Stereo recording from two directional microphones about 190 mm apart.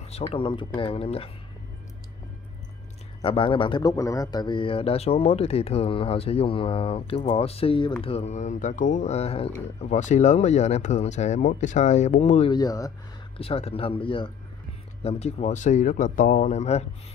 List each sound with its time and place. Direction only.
0.3 s speech: 25° left (ahead or behind)
3.2 s speech: 25° left (ahead or behind)
12.5 s speech: 20° left (ahead or behind)
13.4 s speech: 30° left (ahead or behind)